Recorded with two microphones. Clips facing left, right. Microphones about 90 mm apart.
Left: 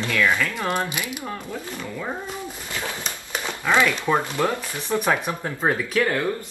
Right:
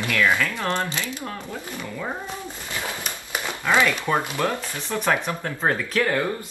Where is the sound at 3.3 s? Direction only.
10° right (ahead or behind).